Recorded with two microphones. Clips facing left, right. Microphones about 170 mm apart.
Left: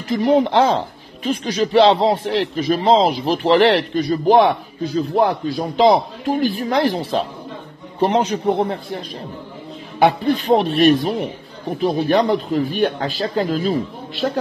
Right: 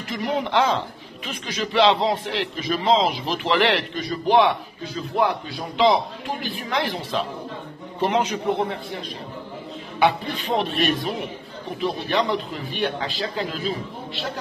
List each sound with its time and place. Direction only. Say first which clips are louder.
0.1 s speech: left 8 dB; 35° left (ahead or behind)
9.9 s speech: left 6 dB; 45° left (ahead or behind)